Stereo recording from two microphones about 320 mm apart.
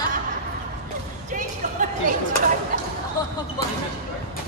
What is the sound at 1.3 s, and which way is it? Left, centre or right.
Music, right.